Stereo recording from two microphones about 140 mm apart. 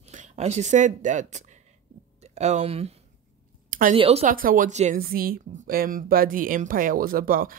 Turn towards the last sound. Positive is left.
turn(degrees=-90)